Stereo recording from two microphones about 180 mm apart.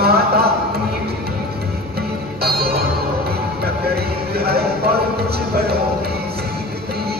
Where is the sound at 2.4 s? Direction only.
60° right (ahead or behind).